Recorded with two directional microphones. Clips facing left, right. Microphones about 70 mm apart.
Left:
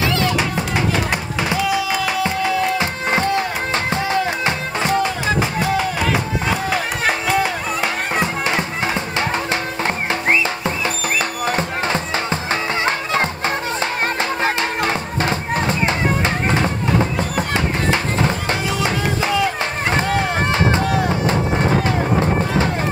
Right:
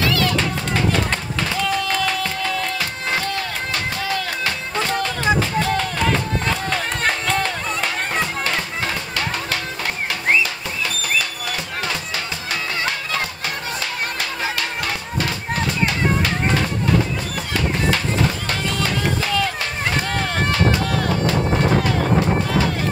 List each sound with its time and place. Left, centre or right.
0.0 s music: left
16.4 s run: left
17.9 s music: left